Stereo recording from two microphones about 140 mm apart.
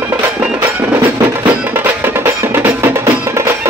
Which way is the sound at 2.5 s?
15° right (ahead or behind).